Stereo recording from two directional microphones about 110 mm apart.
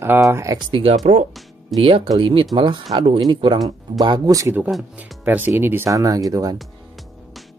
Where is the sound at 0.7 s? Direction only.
60° right (ahead or behind); by 4.6 s 30° right (ahead or behind).